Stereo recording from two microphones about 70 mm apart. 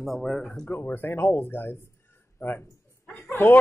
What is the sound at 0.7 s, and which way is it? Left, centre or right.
Speech, left.